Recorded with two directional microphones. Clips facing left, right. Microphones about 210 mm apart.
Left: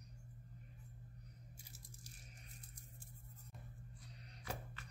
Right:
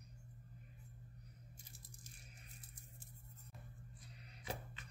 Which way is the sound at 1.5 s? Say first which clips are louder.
Left 1 dB; 5° left (ahead or behind).